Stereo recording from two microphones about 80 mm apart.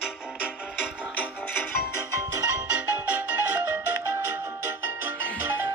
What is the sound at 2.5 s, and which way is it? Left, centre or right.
Music, right.